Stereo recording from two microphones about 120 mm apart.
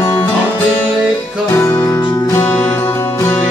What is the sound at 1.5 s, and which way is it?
Music, 20° left (ahead or behind).